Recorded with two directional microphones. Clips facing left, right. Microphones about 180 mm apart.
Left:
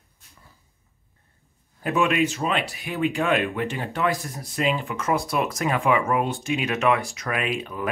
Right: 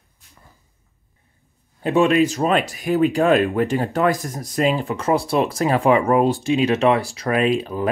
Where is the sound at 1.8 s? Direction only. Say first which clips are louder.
Right 6 dB; 35° right (ahead or behind).